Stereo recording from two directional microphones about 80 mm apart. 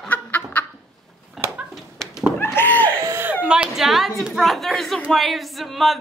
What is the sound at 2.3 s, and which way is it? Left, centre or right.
Door, left.